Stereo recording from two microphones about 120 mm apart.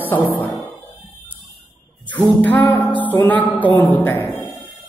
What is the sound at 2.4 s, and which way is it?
A man's voice, 15° left (ahead or behind).